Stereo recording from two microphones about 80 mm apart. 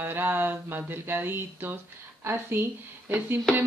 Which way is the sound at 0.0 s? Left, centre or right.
Right.